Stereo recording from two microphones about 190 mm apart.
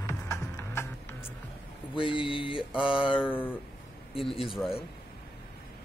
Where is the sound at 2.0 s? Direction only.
25° left (ahead or behind).